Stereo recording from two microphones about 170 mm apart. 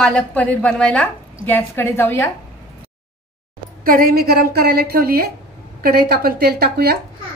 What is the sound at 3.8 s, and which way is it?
A woman's voice, 60° right (ahead or behind).